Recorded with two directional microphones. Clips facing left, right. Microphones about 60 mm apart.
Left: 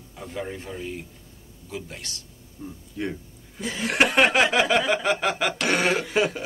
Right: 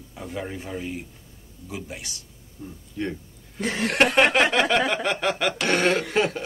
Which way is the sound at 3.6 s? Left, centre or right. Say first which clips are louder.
Right 4 dB; right.